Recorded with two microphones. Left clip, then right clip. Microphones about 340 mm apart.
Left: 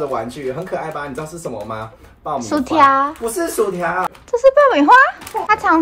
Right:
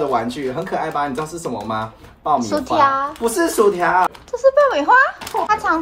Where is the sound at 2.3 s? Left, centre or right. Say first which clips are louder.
Left 2 dB; centre.